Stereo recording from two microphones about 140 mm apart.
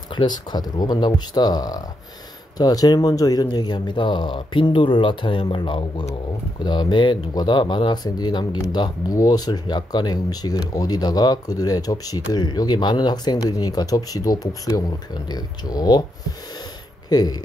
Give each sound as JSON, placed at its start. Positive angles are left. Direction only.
{"t": 0.1, "sound": "speech", "side_deg": 30}
{"t": 17.1, "sound": "speech", "side_deg": 30}